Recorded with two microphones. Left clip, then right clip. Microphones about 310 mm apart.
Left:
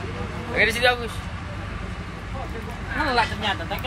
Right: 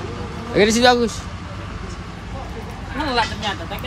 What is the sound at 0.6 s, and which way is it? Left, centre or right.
Speech, centre.